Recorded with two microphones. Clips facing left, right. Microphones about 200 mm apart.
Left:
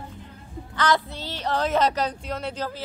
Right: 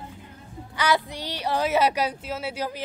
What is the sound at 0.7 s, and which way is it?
A woman's voice, 10° right (ahead or behind).